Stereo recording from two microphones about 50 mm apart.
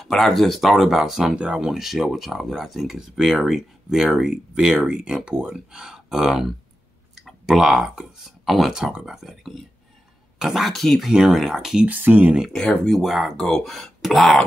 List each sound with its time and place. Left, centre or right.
0.0 s speech: centre
1.3 s speech: right
1.7 s speech: centre
8.7 s speech: centre
10.7 s speech: centre
11.1 s speech: centre
11.9 s speech: right
12.5 s speech: centre
12.9 s speech: centre